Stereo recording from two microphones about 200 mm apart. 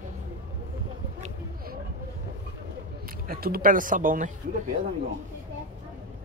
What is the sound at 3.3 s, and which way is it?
Speech, 45° right (ahead or behind).